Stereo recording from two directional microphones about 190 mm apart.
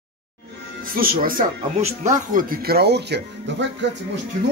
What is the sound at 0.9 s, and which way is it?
Speech, 50° right (ahead or behind).